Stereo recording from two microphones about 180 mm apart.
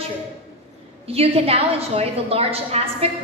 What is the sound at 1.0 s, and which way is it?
A woman's voice, 35° right (ahead or behind).